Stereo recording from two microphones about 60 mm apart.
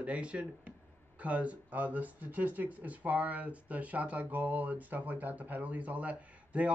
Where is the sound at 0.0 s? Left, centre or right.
Right.